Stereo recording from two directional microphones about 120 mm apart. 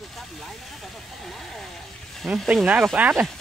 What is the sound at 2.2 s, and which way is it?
Speech, centre (ahead or behind).